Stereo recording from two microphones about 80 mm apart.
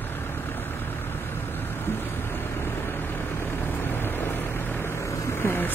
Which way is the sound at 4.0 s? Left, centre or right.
Left.